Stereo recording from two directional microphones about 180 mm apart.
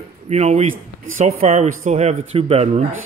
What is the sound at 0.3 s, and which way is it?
Speech, 35° right (ahead or behind).